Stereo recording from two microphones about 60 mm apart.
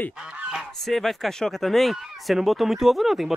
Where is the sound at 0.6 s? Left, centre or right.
Centre.